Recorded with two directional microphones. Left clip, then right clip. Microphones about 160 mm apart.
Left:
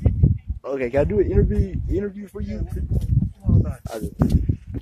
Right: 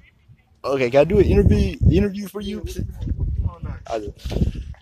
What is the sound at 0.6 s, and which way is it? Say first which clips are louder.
Speech: right 5 dB; 5° right (ahead or behind).